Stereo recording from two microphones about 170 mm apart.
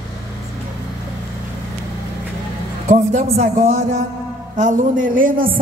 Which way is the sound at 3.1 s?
45° right (ahead or behind).